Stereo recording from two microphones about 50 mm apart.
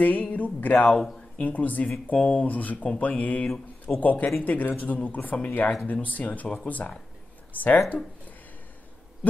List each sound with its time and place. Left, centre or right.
0.0 s speech: left
0.8 s a man's voice: centre
1.4 s speech: left